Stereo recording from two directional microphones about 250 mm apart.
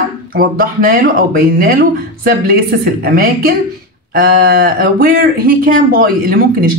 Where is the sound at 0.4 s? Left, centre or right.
Right.